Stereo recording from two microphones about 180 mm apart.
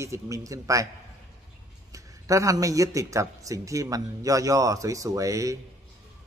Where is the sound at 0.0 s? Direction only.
15° right (ahead or behind).